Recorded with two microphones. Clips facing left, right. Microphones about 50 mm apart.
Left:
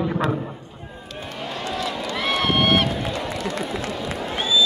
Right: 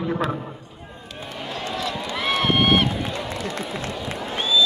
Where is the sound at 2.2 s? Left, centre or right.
Right.